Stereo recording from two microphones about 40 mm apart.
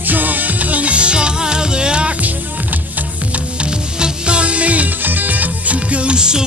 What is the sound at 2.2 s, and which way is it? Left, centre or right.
Music, right.